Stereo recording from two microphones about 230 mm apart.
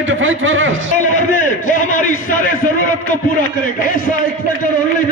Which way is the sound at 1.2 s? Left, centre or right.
Left.